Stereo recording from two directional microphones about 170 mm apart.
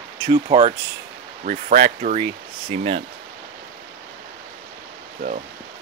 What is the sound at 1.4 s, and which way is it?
Speech, 45° right (ahead or behind).